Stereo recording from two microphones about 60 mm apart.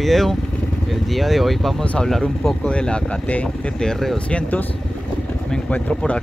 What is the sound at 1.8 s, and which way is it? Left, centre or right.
Speech, left.